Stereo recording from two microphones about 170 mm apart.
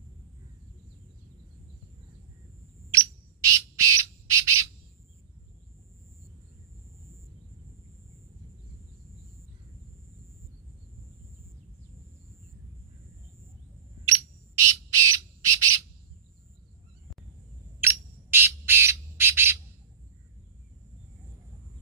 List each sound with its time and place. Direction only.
2.9 s bird: 15° right (ahead or behind)
14.6 s squawk: 15° right (ahead or behind)
17.7 s bird: 15° right (ahead or behind)